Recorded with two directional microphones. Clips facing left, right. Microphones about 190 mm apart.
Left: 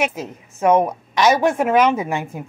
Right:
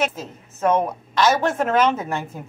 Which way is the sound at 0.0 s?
15° left (ahead or behind).